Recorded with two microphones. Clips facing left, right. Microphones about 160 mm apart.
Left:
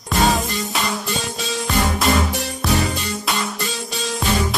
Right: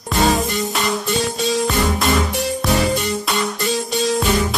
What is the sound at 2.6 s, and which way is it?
Music, centre (ahead or behind).